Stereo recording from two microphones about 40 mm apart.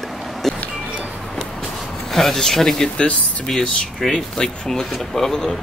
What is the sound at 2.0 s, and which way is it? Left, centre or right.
Speech, centre.